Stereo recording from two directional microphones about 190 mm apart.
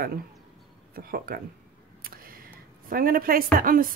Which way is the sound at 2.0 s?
50° right (ahead or behind).